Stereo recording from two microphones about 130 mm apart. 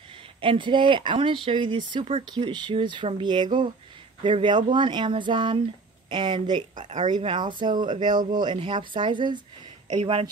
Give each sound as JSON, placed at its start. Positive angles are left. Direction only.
{"t": 0.4, "sound": "speech", "side_deg": -40}
{"t": 6.7, "sound": "speech", "side_deg": -75}
{"t": 7.1, "sound": "speech", "side_deg": -35}